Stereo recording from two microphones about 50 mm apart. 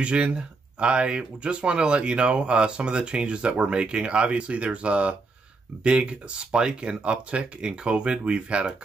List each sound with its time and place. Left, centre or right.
0.0 s speech: right